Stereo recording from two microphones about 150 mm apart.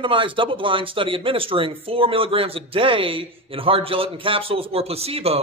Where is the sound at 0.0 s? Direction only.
35° right (ahead or behind).